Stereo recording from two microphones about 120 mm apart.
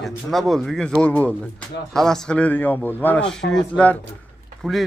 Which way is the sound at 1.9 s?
5° left (ahead or behind).